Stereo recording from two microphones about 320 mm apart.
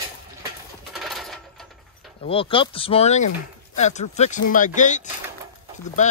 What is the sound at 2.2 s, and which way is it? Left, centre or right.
Speech, centre.